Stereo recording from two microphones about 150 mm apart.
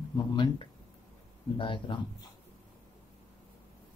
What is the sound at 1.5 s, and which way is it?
Speech, 35° left (ahead or behind).